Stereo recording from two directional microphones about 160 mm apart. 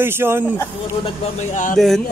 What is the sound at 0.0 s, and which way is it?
Speech, 15° right (ahead or behind).